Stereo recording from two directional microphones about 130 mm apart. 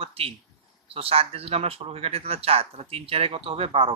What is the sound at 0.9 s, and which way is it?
A man's voice, 45° right (ahead or behind).